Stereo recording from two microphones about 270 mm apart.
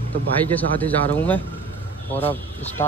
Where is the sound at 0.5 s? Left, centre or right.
Centre.